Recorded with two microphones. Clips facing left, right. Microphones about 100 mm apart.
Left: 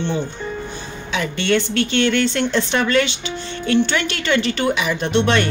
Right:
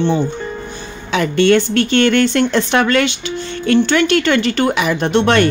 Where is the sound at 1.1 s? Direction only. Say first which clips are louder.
Right 7 dB; 55° right (ahead or behind).